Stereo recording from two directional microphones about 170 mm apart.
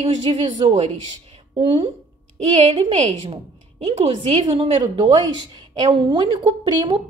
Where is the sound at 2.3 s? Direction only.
35° right (ahead or behind).